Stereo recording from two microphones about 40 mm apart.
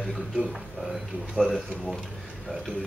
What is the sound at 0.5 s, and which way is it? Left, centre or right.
Speech, centre.